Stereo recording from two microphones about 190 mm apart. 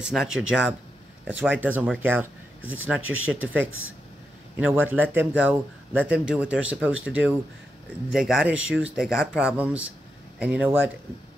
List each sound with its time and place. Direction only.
0.1 s speech: centre (ahead or behind)
2.6 s speech: 90° right
4.6 s speech: 5° right (ahead or behind)